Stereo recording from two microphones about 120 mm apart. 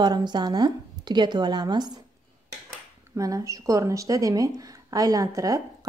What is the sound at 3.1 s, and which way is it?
Speech, 30° right (ahead or behind).